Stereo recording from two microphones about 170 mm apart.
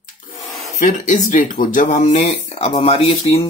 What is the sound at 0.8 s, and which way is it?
Speech, 50° left (ahead or behind).